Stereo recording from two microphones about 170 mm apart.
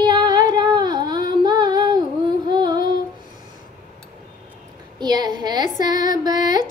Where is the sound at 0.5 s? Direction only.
25° right (ahead or behind).